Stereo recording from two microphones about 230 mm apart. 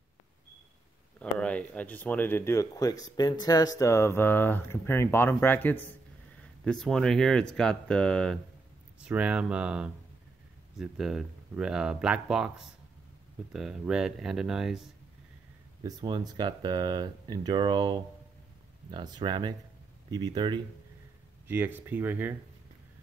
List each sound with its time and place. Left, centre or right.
1.2 s speech: centre
15.8 s speech: centre
21.5 s speech: centre